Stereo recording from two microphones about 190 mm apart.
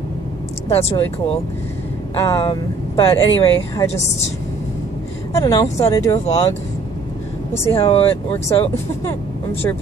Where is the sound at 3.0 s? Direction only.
30° left (ahead or behind).